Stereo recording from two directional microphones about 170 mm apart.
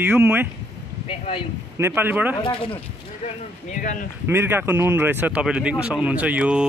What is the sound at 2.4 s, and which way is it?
Speech, 30° left (ahead or behind).